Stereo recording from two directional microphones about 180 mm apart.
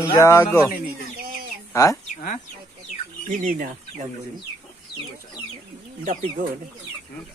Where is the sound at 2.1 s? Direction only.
40° left (ahead or behind).